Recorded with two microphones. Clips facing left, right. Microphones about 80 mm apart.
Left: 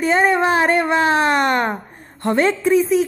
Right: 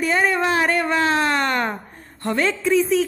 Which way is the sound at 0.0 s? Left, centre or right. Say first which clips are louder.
Left 4 dB; left.